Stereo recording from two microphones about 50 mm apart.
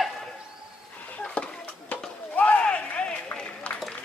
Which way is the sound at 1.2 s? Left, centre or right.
Centre.